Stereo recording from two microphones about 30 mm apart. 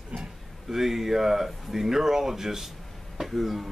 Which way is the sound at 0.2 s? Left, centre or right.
Centre.